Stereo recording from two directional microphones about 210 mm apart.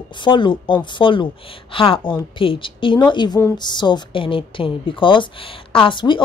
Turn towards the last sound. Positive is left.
turn(degrees=25)  # may be behind; listen again after turning